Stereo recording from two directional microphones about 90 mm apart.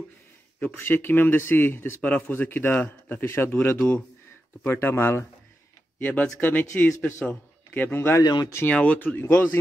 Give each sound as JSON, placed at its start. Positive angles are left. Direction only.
{"t": 0.6, "sound": "speech", "side_deg": 20}
{"t": 8.2, "sound": "speech", "side_deg": 45}
{"t": 8.6, "sound": "speech", "side_deg": 15}